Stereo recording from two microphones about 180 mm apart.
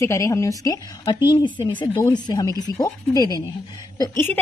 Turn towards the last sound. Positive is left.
turn(degrees=15)  # may be behind; listen again after turning